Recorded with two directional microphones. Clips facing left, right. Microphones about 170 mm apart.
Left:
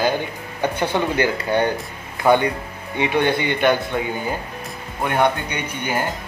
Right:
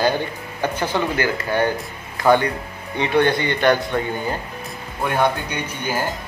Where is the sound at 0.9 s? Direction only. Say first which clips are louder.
Left 1 dB; 20° left (ahead or behind).